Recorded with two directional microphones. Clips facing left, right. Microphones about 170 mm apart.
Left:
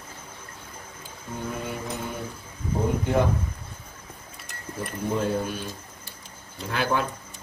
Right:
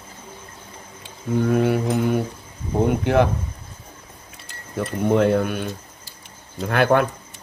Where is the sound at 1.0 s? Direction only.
75° right (ahead or behind).